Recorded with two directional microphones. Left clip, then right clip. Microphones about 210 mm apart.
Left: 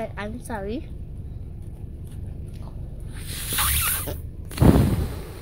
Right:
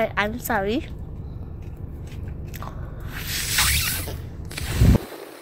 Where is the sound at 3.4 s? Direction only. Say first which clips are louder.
Right 3 dB; 30° left (ahead or behind).